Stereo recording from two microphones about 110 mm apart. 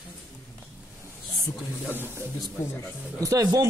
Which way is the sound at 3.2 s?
30° right (ahead or behind).